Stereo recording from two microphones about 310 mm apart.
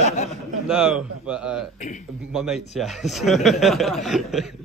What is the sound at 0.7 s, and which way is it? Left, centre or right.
Speech, centre.